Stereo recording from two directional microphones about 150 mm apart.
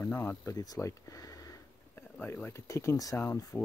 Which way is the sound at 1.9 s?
15° left (ahead or behind).